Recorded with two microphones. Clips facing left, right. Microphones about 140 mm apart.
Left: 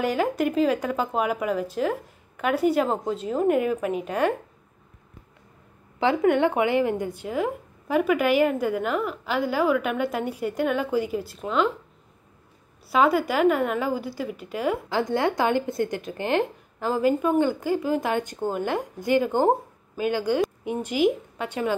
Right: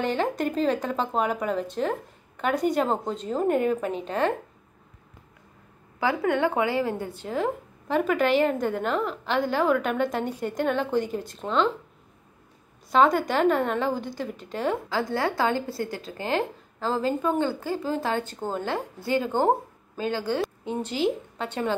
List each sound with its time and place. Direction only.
0.0 s speech: 10° left (ahead or behind)
5.9 s speech: 20° left (ahead or behind)
12.8 s speech: 5° left (ahead or behind)
14.9 s speech: 20° left (ahead or behind)